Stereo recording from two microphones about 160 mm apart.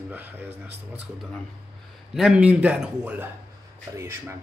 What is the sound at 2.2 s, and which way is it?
A man's voice, 5° right (ahead or behind).